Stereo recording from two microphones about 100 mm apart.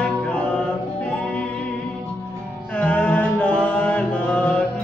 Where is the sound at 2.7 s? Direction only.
15° left (ahead or behind).